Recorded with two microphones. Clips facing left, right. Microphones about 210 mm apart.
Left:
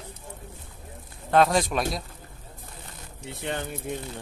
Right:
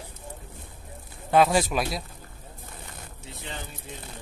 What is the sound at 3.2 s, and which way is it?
Speech, 60° left (ahead or behind).